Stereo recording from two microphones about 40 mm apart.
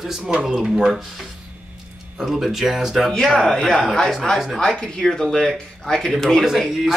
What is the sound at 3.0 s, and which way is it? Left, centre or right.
Speech, centre.